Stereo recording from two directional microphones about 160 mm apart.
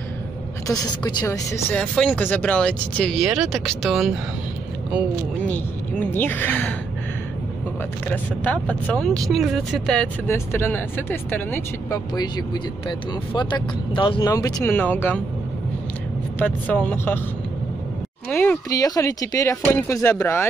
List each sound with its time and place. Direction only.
0.7 s speech: 25° left (ahead or behind)
1.8 s speech: 5° left (ahead or behind)
5.5 s speech: 10° left (ahead or behind)
8.1 s speech: 10° left (ahead or behind)
10.2 s speech: 15° left (ahead or behind)
12.2 s speech: 30° left (ahead or behind); by 15.2 s 10° left (ahead or behind)
16.3 s speech: 10° left (ahead or behind)
18.3 s speech: 10° left (ahead or behind)
18.7 s speech: 20° left (ahead or behind)